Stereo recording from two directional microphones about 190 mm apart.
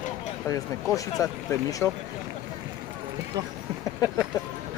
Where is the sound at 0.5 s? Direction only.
10° left (ahead or behind).